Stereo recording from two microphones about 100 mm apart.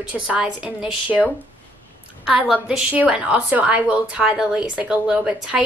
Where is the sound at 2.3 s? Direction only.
5° right (ahead or behind).